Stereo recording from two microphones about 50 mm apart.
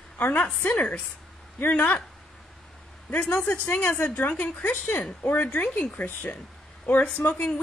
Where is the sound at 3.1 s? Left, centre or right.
Left.